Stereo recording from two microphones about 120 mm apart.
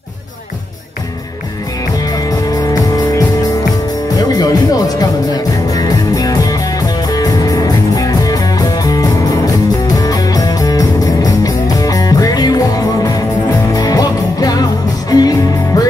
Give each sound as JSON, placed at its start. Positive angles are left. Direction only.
{"t": 2.1, "sound": "music", "side_deg": 30}